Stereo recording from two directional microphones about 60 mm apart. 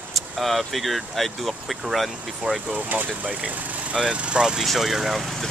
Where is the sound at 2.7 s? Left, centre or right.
Right.